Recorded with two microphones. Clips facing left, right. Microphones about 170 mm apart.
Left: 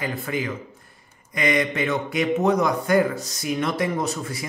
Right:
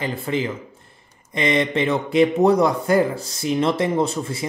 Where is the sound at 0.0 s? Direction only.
25° right (ahead or behind).